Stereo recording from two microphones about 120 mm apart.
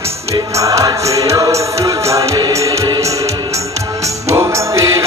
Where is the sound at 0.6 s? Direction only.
25° right (ahead or behind).